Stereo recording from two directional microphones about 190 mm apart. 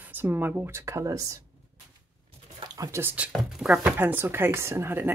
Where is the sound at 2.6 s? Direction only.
20° right (ahead or behind).